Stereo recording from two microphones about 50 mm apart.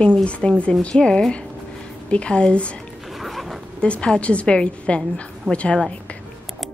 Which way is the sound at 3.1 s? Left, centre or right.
Centre.